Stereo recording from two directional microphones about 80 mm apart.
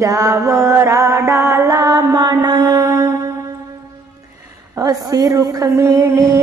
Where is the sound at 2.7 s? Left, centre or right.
Right.